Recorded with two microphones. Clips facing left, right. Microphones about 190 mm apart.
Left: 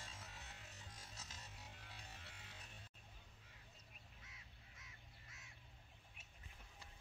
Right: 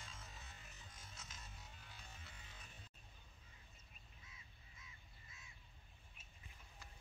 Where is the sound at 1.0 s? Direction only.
35° left (ahead or behind).